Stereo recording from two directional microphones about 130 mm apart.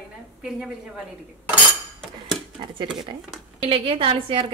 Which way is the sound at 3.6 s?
45° right (ahead or behind).